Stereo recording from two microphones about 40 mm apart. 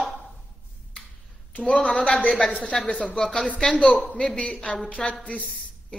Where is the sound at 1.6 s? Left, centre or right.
Left.